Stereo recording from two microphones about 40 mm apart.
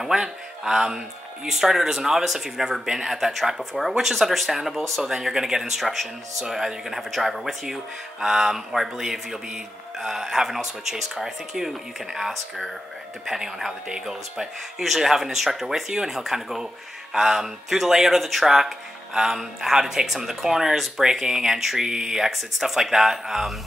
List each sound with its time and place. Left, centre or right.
0.0 s speech: centre